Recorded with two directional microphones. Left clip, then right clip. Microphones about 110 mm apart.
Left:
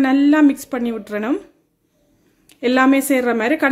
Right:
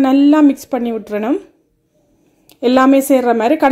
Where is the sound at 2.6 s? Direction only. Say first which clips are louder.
Right 4 dB; 30° right (ahead or behind).